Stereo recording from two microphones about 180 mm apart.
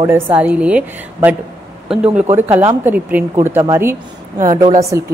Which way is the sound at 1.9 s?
5° right (ahead or behind).